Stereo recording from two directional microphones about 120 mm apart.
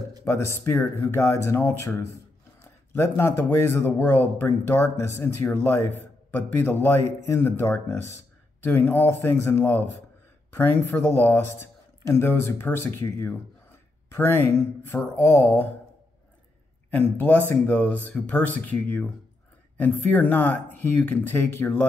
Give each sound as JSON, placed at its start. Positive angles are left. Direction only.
{"t": 0.2, "sound": "speech", "side_deg": 20}
{"t": 16.9, "sound": "speech", "side_deg": 15}